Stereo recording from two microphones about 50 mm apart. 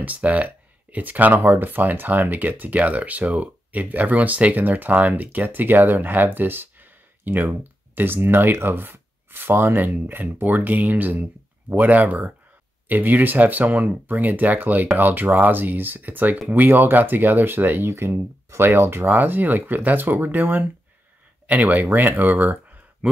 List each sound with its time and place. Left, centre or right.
0.0 s speech: right
17.8 s speech: right